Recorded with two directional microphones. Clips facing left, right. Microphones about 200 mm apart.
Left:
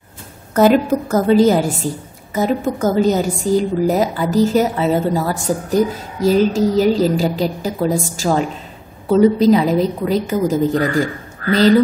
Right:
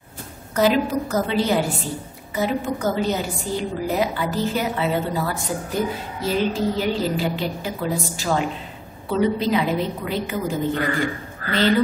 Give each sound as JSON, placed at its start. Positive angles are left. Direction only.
{"t": 0.6, "sound": "a woman's voice", "side_deg": 50}